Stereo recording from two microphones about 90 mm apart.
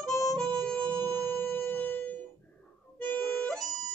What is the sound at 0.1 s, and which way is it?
Harmonica, 40° left (ahead or behind).